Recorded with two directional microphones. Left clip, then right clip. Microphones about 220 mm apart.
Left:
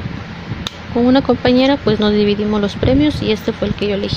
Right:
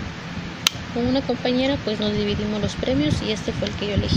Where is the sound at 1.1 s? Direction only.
20° left (ahead or behind).